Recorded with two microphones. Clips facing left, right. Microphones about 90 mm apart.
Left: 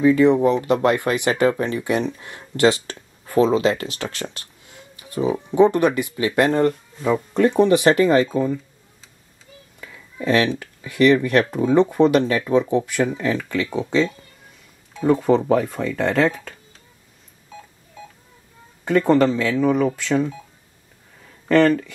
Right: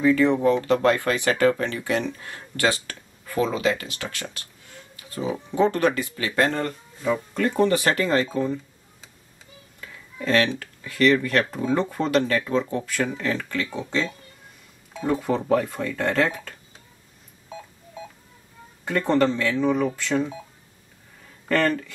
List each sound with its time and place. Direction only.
0.0 s speech: 20° left (ahead or behind); by 4.5 s 35° left (ahead or behind)
4.9 s speech: 20° left (ahead or behind)
9.8 s a sound: 15° left (ahead or behind)
10.6 s speech: 15° left (ahead or behind)
15.0 s speech: 5° left (ahead or behind)
15.3 s speech: 15° left (ahead or behind)
18.9 s speech: 10° left (ahead or behind)
21.5 s speech: 15° left (ahead or behind)